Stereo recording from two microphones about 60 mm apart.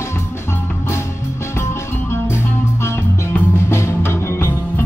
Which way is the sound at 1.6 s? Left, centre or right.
Left.